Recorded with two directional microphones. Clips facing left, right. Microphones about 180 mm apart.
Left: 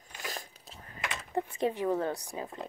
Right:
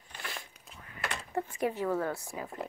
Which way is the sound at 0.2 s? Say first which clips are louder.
Left 3 dB; 40° left (ahead or behind).